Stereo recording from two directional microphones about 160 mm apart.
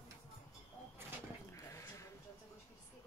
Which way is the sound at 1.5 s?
20° left (ahead or behind).